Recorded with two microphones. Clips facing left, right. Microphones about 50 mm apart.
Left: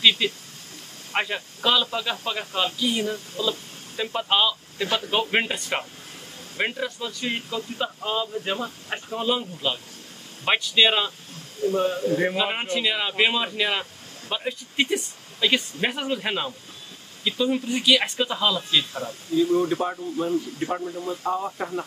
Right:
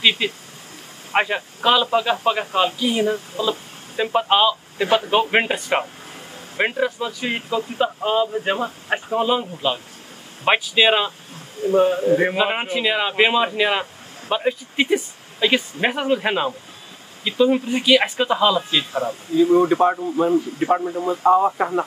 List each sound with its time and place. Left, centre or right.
0.0 s a man's voice: centre
12.6 s a man's voice: centre
21.4 s speech: right